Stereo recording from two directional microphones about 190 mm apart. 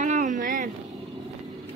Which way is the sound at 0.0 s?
40° right (ahead or behind).